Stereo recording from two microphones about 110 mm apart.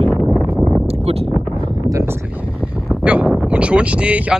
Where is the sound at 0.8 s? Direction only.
65° right (ahead or behind).